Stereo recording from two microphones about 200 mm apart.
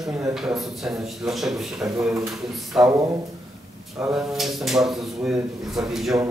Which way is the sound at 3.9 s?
Centre (ahead or behind).